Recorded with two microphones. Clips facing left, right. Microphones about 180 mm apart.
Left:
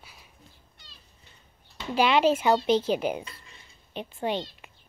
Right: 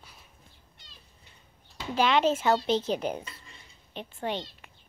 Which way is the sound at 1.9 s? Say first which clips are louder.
Left 2 dB; 10° left (ahead or behind).